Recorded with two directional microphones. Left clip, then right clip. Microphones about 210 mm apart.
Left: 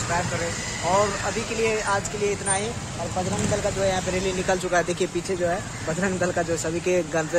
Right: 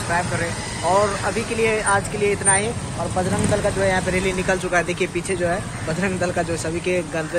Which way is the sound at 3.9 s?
10° left (ahead or behind).